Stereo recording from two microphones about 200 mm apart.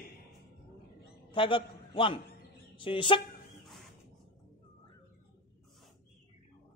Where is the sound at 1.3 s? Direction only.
25° left (ahead or behind).